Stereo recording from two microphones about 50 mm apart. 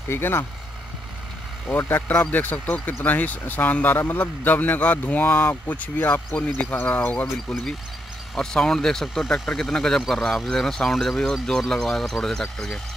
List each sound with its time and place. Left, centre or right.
0.1 s speech: left
1.8 s speech: left
6.3 s speech: left
8.4 s speech: centre